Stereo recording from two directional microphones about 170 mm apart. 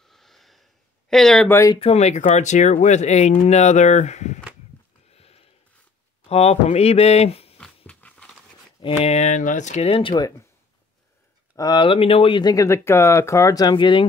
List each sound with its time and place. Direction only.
0.0 s a sound: centre (ahead or behind)
1.1 s speech: 5° left (ahead or behind)
1.5 s speech: 15° left (ahead or behind)
1.8 s speech: 40° left (ahead or behind)
5.1 s a sound: 35° left (ahead or behind)
6.2 s speech: 35° left (ahead or behind)
7.5 s dog: 5° left (ahead or behind)
8.8 s speech: 35° left (ahead or behind)
11.5 s speech: 25° left (ahead or behind)